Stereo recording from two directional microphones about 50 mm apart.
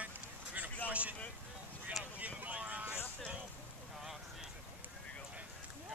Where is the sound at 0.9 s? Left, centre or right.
Right.